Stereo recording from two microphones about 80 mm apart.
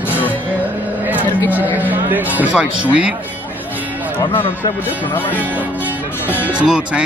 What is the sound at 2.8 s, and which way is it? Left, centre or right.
Speech, centre.